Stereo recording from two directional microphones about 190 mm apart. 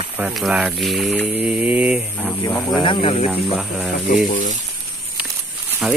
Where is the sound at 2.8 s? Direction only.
25° left (ahead or behind).